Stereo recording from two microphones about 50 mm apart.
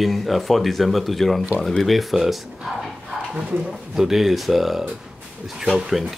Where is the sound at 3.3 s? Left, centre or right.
Right.